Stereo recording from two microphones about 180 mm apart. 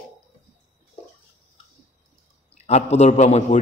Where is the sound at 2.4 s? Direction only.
35° left (ahead or behind).